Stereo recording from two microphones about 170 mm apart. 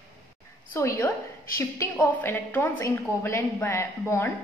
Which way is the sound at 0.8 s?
15° left (ahead or behind).